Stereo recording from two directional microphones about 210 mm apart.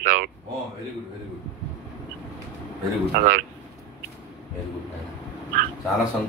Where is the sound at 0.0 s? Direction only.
40° right (ahead or behind).